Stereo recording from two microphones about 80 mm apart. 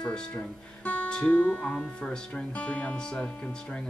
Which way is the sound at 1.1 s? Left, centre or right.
Centre.